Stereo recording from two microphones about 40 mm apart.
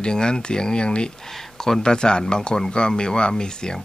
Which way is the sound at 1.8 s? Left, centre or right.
Left.